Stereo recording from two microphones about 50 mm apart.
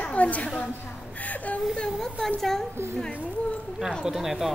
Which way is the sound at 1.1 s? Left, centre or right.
Left.